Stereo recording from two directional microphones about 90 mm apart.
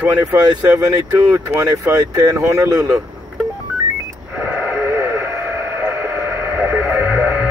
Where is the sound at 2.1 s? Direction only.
35° right (ahead or behind).